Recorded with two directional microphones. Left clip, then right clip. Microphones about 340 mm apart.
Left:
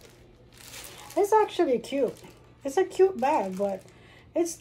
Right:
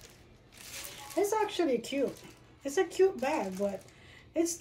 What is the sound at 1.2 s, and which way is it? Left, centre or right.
Speech, centre.